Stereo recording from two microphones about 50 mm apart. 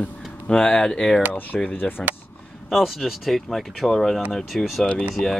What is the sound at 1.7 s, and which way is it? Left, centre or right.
Speech, left.